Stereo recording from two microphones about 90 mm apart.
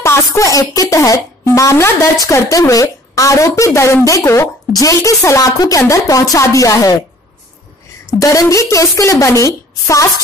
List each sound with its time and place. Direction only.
0.0 s speech: 30° left (ahead or behind)
8.2 s speech: 40° left (ahead or behind)